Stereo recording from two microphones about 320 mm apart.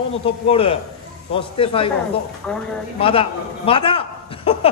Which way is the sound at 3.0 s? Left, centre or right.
Centre.